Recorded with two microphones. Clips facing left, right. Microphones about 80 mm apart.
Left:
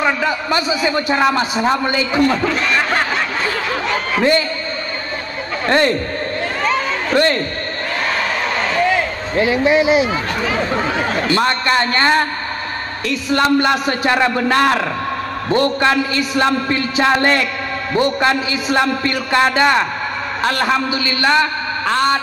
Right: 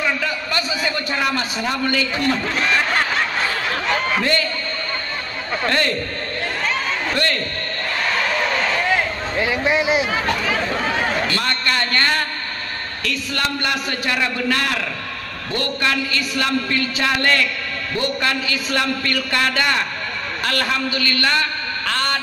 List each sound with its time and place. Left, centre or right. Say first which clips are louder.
0.0 s a man's voice: left 5 dB; centre
4.2 s a man's voice: left 6 dB; centre
5.7 s a man's voice: left 7 dB; left
7.2 s a man's voice: left 9 dB; left
11.2 s a man's voice: left 6 dB; centre